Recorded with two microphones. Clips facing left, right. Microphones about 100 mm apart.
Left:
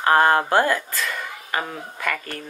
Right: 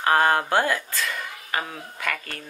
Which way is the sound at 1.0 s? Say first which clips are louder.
Left 2 dB; centre (ahead or behind).